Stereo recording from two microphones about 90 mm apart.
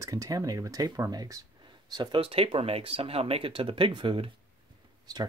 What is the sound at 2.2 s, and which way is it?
Speech, 90° right.